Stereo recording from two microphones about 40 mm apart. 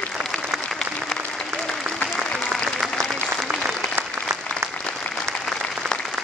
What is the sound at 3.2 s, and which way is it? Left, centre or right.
Applause, right.